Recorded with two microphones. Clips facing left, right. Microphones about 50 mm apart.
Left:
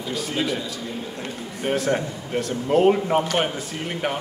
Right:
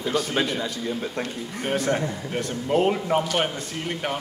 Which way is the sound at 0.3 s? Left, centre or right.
Right.